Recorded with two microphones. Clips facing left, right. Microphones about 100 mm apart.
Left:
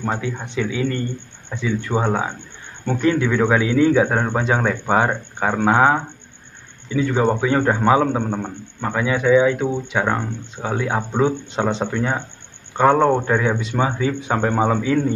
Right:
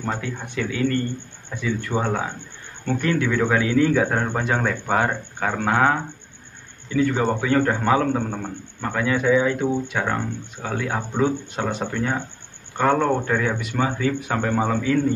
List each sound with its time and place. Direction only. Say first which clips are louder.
0.0 s a man's voice: left 3 dB; 20° left (ahead or behind)
10.0 s speech: left 3 dB; 20° left (ahead or behind)